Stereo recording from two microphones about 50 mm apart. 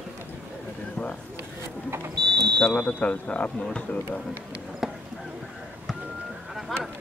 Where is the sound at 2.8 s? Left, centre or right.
Left.